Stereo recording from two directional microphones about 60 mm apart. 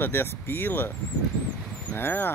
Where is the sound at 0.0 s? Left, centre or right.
Left.